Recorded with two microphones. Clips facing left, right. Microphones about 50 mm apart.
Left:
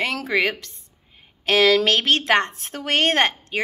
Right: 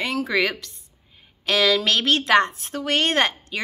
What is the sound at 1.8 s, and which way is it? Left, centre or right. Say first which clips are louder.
Speech: left 1 dB; left.